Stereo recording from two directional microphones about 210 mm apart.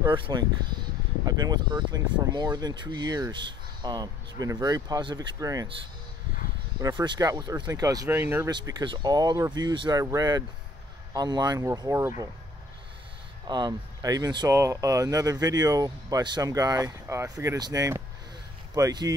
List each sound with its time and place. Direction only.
0.1 s speech: 25° right (ahead or behind)
13.5 s speech: 20° right (ahead or behind)